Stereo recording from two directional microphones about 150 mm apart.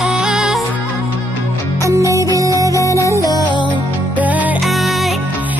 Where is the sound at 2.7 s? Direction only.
20° left (ahead or behind).